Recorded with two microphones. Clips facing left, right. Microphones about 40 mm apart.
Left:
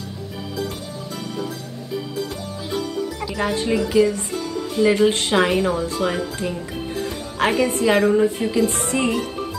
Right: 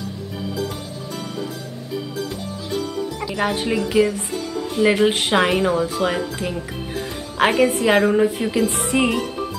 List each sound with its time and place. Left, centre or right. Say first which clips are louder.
3.3 s a woman's voice: even; right